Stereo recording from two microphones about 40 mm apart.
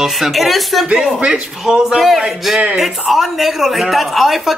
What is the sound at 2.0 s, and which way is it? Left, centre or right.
Speech, centre.